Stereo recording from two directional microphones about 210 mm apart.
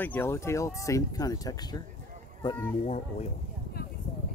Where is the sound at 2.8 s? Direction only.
30° left (ahead or behind).